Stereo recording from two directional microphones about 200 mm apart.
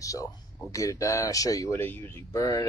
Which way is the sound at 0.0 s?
15° left (ahead or behind).